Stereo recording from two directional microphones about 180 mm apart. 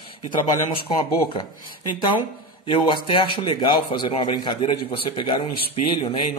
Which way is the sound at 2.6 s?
30° left (ahead or behind).